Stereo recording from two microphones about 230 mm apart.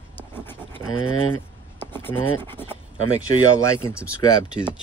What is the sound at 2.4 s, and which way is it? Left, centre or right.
Pant, centre.